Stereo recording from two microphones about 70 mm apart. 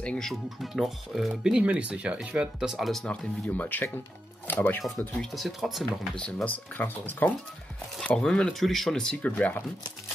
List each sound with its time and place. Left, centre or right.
0.0 s speech: centre
0.3 s speech: centre
2.8 s speech: centre
3.1 s speech: left
5.3 s speech: centre
5.9 s speech: centre
6.3 s speech: left
8.2 s speech: centre
8.5 s speech: centre
9.2 s speech: left